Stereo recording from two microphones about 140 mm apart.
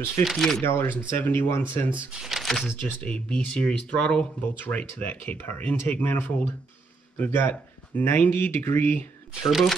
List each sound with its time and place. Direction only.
0.2 s speech: centre (ahead or behind)
0.6 s speech: 15° left (ahead or behind)
1.9 s speech: centre (ahead or behind); by 9.0 s 15° left (ahead or behind)
9.5 s speech: centre (ahead or behind)